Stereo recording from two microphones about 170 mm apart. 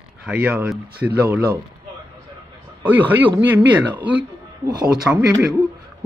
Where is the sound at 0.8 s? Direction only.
70° right (ahead or behind).